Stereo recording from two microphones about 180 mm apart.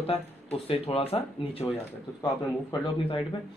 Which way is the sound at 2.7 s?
30° left (ahead or behind).